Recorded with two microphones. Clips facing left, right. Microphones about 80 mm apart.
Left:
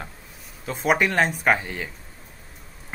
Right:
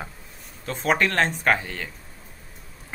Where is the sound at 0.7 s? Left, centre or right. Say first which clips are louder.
Left 1 dB; centre.